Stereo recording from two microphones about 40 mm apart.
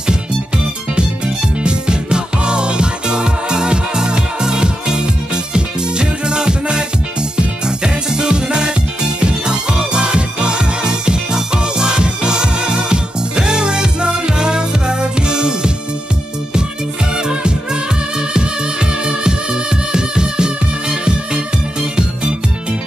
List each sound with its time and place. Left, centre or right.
0.9 s music: right
17.1 s music: right